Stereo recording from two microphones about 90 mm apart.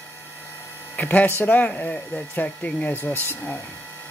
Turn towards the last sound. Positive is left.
turn(degrees=25)  # may be behind; listen again after turning